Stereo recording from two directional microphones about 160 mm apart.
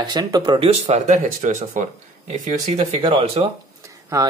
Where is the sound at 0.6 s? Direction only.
40° right (ahead or behind).